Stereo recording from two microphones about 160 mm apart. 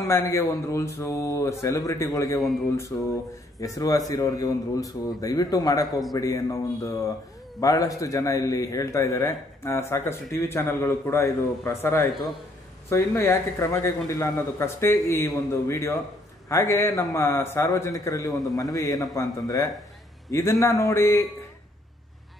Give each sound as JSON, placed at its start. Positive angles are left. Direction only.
{"t": 0.1, "sound": "a man's voice", "side_deg": 20}
{"t": 2.9, "sound": "a man's voice", "side_deg": 10}
{"t": 3.5, "sound": "a man's voice", "side_deg": 20}